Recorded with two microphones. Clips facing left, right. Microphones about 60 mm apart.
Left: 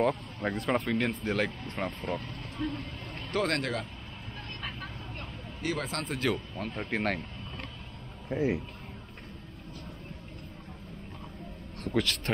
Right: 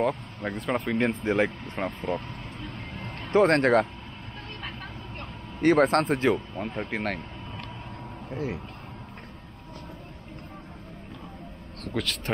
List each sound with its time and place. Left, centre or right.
0.0 s speech: centre
0.9 s speech: right
1.6 s speech: centre
3.3 s speech: right
5.6 s speech: right
6.3 s speech: centre
8.3 s speech: left
11.8 s speech: centre